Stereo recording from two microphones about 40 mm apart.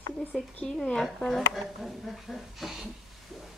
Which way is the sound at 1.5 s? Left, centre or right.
Centre.